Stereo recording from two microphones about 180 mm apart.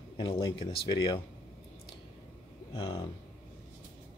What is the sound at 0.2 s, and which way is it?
Speech, 25° left (ahead or behind).